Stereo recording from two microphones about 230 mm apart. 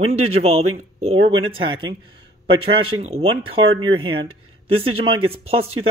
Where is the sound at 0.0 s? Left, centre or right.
Right.